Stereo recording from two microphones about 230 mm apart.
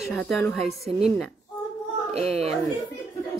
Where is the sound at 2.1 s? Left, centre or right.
Right.